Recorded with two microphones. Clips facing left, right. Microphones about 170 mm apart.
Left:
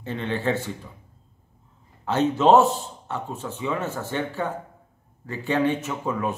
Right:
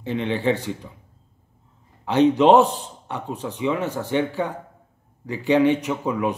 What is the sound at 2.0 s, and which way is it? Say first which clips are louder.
A man's voice: right 3 dB; 15° right (ahead or behind).